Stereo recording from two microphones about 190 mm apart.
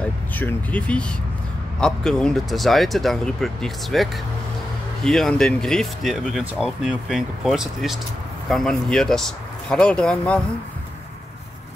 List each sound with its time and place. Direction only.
0.0 s speech: 10° left (ahead or behind)